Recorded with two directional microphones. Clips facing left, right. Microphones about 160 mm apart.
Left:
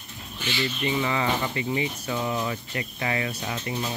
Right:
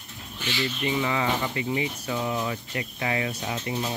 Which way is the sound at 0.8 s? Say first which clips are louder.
Even; 5° right (ahead or behind).